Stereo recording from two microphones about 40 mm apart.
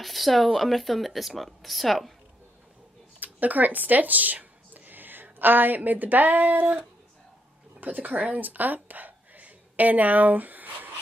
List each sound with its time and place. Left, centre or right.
0.0 s speech: centre
3.2 s a sound: right
5.8 s speech: right
7.8 s a woman's voice: right